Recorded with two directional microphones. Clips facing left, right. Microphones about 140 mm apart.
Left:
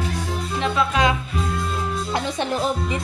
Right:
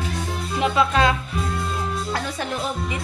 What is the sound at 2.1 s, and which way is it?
Speech, 25° left (ahead or behind).